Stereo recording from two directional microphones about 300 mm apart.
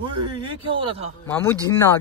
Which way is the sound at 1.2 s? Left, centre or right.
Centre.